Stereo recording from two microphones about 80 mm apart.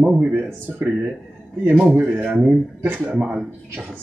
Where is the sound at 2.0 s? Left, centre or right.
Centre.